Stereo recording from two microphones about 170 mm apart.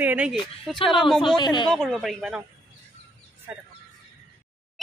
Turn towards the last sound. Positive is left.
turn(degrees=-10)  # may be behind; listen again after turning